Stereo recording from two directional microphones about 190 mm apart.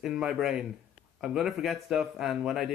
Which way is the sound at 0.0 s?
5° right (ahead or behind).